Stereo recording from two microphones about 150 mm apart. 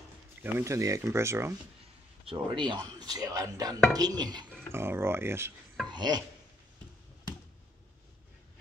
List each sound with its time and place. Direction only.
0.4 s speech: 15° right (ahead or behind)
2.2 s speech: 35° right (ahead or behind)
4.7 s speech: 15° right (ahead or behind)
5.9 s speech: 30° right (ahead or behind)